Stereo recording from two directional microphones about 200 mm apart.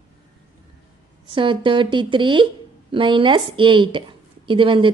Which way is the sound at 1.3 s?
25° right (ahead or behind).